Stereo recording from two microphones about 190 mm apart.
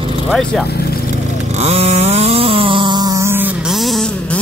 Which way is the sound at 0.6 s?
55° left (ahead or behind).